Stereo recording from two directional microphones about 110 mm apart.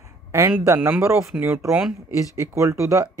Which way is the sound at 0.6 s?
20° right (ahead or behind).